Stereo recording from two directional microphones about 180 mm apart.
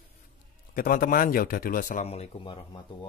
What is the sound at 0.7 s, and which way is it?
Speech, 50° left (ahead or behind).